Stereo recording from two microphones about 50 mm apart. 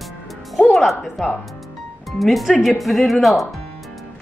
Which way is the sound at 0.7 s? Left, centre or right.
Centre.